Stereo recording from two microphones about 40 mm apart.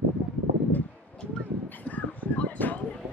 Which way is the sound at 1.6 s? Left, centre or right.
Left.